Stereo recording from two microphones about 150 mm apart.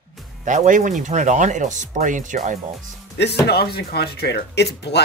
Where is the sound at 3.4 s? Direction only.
90° left.